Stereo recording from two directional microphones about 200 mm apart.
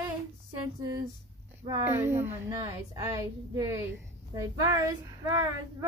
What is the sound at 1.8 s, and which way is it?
Speech, 10° right (ahead or behind).